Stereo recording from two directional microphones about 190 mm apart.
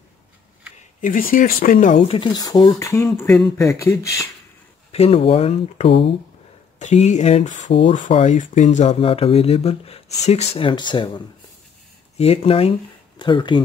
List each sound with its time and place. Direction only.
1.0 s speech: 45° left (ahead or behind)
2.0 s speech: 30° left (ahead or behind)
3.2 s speech: 5° left (ahead or behind)
3.5 s speech: 15° left (ahead or behind)
4.9 s speech: 30° left (ahead or behind)